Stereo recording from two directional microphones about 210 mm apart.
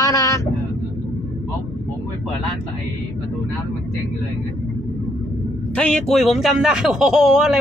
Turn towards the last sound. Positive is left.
turn(degrees=0)  # may be behind; listen again after turning